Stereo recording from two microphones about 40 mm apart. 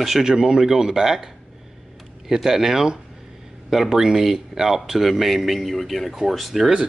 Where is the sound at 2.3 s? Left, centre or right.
Centre.